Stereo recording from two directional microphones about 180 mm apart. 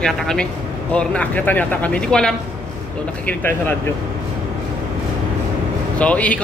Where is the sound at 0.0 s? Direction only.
5° left (ahead or behind).